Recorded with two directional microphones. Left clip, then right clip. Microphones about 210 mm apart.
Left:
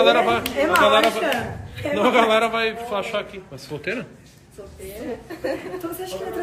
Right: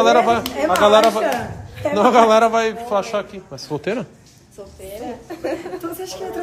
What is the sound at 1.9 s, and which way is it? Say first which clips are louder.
A man's voice: right 5 dB; 30° right (ahead or behind).